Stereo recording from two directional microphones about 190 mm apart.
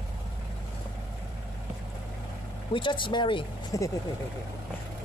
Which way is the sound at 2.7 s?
25° left (ahead or behind).